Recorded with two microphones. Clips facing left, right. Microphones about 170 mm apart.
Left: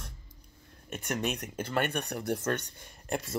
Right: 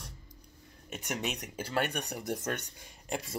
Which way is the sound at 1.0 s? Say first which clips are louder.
Left 3 dB; 15° right (ahead or behind).